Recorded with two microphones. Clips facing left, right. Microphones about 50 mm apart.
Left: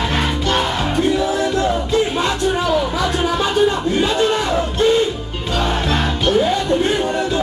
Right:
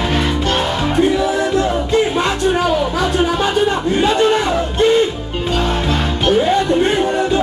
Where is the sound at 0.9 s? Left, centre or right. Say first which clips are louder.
Right 4 dB; right.